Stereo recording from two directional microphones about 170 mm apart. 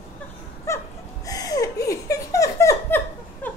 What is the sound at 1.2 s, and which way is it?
Laughter, 20° left (ahead or behind).